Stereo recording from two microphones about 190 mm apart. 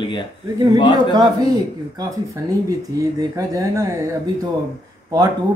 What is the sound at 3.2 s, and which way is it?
Speech, 20° right (ahead or behind).